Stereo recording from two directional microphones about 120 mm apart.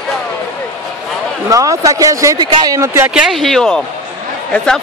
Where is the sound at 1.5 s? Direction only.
30° right (ahead or behind).